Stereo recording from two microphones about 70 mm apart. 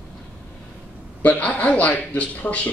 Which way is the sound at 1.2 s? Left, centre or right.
Left.